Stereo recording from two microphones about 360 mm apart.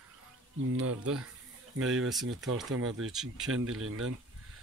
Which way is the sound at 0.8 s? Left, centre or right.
Right.